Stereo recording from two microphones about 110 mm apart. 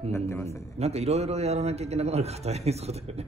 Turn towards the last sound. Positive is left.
turn(degrees=-70)  # may be behind; listen again after turning